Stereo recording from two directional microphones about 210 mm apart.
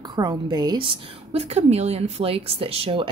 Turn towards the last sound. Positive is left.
turn(degrees=-25)  # may be behind; listen again after turning